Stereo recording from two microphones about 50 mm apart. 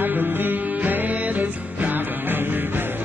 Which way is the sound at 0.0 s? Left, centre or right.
Right.